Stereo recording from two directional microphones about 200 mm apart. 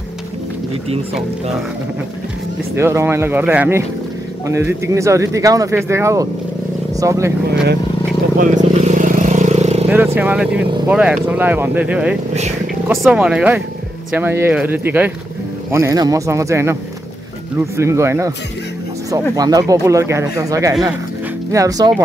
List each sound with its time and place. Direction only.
2.7 s speech: 15° right (ahead or behind)
8.4 s vehicle: 35° right (ahead or behind)
9.8 s speech: 10° right (ahead or behind)